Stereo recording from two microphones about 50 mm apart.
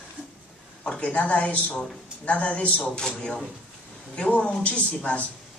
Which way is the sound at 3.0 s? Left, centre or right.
Centre.